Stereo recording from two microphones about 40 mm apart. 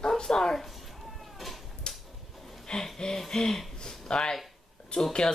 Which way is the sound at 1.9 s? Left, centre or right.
Left.